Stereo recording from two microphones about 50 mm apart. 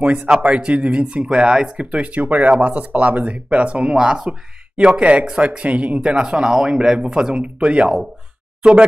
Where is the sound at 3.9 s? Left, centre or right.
Centre.